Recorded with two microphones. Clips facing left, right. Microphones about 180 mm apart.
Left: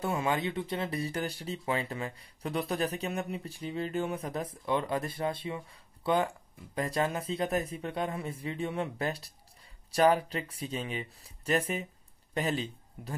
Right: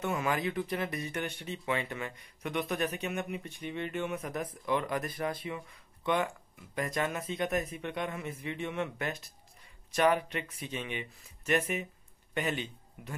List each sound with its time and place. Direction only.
0.0 s speech: 30° left (ahead or behind)